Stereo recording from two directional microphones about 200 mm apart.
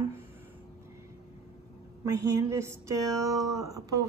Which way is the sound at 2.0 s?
15° right (ahead or behind).